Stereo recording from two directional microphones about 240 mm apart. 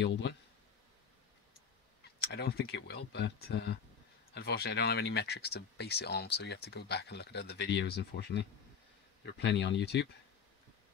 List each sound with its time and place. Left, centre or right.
0.0 s speech: left
2.0 s speech: left